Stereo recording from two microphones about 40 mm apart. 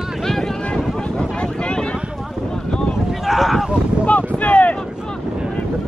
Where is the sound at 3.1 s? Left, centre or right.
Centre.